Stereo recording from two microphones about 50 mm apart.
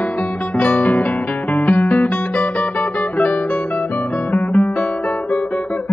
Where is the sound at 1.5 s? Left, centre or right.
Left.